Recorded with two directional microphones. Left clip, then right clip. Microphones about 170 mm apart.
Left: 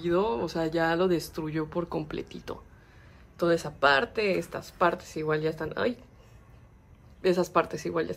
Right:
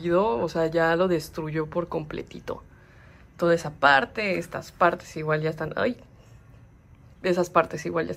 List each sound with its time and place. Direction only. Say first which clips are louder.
0.0 s speech: right 4 dB; centre (ahead or behind)
7.2 s speech: right 3 dB; 10° left (ahead or behind)